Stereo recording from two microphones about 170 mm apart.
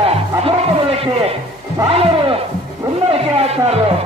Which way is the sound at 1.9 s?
35° right (ahead or behind).